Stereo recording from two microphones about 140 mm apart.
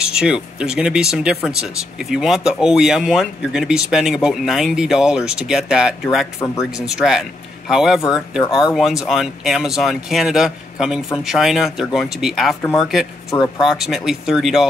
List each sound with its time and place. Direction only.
0.0 s speech: 5° right (ahead or behind)
6.4 s speech: 20° left (ahead or behind)
7.0 s speech: 5° right (ahead or behind)